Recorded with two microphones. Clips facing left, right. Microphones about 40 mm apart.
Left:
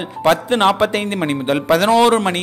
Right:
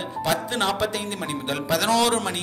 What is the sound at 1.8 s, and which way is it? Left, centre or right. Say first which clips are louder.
Speech: left 7 dB; left.